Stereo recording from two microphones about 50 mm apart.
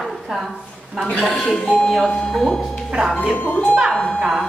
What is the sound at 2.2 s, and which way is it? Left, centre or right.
Speech, centre.